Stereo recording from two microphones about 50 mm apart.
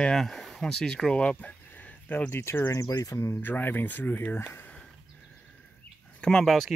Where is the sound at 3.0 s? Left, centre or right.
Left.